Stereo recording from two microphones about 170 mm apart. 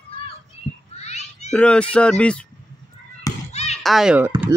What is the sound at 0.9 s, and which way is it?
Children playing, 40° left (ahead or behind).